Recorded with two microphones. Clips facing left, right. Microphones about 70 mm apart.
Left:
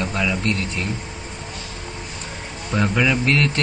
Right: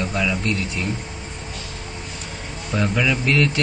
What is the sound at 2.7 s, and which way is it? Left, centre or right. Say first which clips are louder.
Speech: left 2 dB; centre.